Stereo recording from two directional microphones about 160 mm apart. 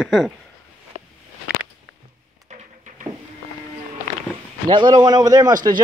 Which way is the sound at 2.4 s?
50° right (ahead or behind).